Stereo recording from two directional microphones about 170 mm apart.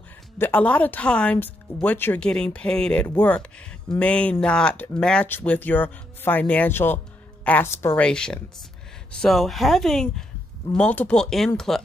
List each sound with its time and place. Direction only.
0.4 s speech: 10° left (ahead or behind)